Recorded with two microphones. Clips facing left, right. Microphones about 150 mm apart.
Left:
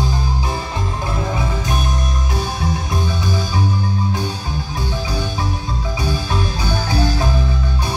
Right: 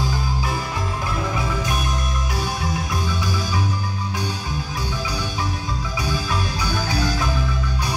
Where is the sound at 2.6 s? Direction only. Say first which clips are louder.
Left 3 dB; 25° left (ahead or behind).